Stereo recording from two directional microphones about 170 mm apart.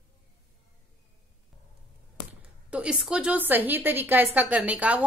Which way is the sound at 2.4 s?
5° right (ahead or behind).